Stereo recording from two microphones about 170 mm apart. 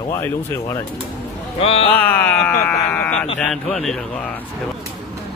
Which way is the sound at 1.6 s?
35° left (ahead or behind).